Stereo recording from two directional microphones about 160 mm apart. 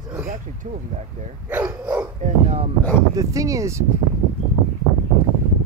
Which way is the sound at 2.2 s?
40° right (ahead or behind).